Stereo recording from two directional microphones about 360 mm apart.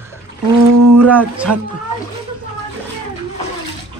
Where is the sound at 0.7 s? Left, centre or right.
Right.